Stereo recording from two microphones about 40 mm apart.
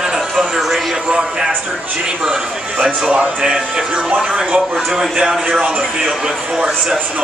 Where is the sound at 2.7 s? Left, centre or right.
Right.